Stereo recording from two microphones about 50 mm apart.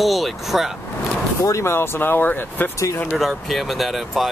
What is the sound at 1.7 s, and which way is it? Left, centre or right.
Speech, left.